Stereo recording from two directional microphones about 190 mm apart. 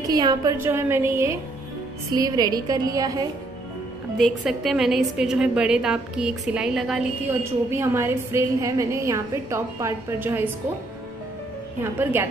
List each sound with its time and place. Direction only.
0.0 s a woman's voice: 20° right (ahead or behind)
4.2 s a woman's voice: centre (ahead or behind)
7.2 s a woman's voice: 15° right (ahead or behind)
11.8 s a woman's voice: 10° right (ahead or behind)